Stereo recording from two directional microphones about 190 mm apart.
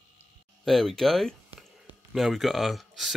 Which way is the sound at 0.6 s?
Centre (ahead or behind).